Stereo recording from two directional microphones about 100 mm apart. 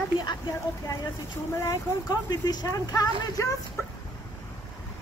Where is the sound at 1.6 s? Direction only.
35° left (ahead or behind).